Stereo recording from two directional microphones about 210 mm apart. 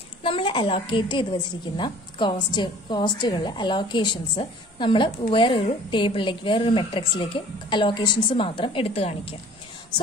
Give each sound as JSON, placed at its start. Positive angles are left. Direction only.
{"t": 0.2, "sound": "a woman's voice", "side_deg": 25}